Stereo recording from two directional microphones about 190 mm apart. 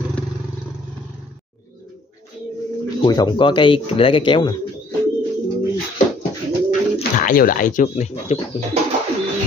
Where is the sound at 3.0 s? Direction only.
20° left (ahead or behind).